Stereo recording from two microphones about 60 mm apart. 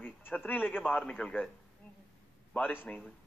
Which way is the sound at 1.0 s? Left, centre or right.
Centre.